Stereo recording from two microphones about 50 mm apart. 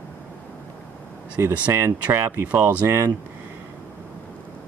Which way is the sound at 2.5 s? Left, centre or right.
Right.